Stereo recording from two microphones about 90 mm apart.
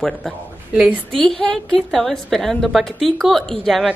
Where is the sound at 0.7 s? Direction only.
10° right (ahead or behind).